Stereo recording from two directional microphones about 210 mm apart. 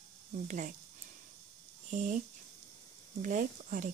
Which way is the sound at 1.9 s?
35° right (ahead or behind).